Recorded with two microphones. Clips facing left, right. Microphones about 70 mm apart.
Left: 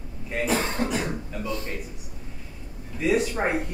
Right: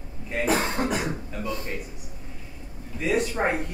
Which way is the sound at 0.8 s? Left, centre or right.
Centre.